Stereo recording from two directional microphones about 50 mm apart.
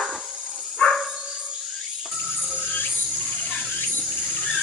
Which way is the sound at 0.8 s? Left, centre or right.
Left.